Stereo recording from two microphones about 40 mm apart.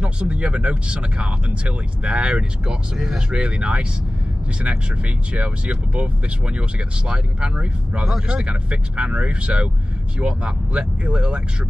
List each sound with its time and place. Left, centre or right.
0.0 s speech: right
5.3 s speech: right
7.1 s speech: right
8.5 s speech: right